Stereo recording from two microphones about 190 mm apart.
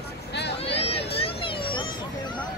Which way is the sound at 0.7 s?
30° left (ahead or behind).